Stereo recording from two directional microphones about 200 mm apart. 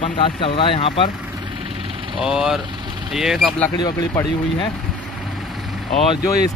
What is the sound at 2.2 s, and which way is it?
Speech, centre (ahead or behind).